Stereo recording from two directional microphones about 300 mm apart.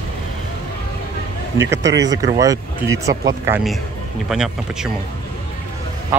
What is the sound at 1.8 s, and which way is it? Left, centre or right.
Speech, right.